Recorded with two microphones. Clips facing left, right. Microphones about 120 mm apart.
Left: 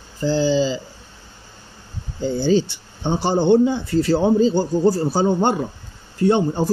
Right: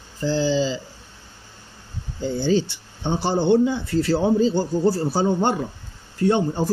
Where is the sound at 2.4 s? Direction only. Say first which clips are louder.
Left 3 dB; 20° left (ahead or behind).